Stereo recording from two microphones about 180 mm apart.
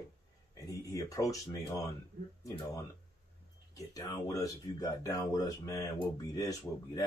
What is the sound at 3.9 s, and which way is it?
Speech, 20° left (ahead or behind).